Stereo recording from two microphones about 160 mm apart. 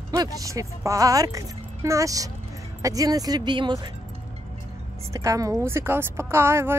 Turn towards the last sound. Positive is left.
turn(degrees=-15)  # may be behind; listen again after turning